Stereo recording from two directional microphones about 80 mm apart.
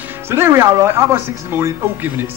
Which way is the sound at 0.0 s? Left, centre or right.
Right.